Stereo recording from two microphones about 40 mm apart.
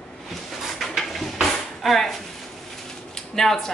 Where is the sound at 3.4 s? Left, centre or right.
Centre.